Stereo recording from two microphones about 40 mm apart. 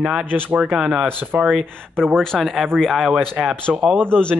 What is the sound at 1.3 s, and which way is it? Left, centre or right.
Speech, right.